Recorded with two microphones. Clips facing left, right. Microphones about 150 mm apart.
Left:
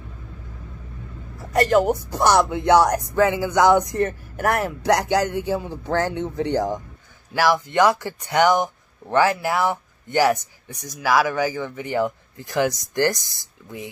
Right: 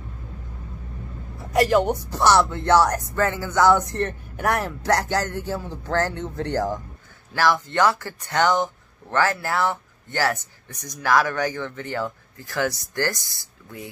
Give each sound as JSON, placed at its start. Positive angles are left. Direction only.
{"t": 1.5, "sound": "speech", "side_deg": 0}
{"t": 2.0, "sound": "speech", "side_deg": 10}